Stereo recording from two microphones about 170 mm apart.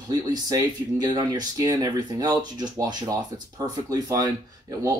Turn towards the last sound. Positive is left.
turn(degrees=-20)  # may be behind; listen again after turning